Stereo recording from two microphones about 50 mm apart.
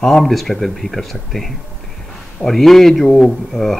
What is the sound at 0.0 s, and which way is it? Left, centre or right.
Speech, centre.